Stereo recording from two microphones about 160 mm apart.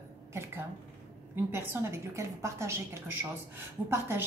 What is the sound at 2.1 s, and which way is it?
Speech, 20° right (ahead or behind).